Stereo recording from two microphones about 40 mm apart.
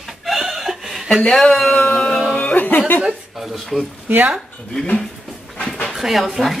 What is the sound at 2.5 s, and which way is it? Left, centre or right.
Music, left.